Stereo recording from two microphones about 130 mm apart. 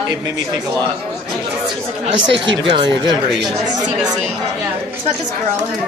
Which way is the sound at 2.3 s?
40° right (ahead or behind).